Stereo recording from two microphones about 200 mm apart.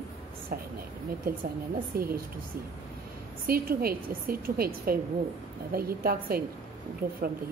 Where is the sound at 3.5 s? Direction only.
50° right (ahead or behind).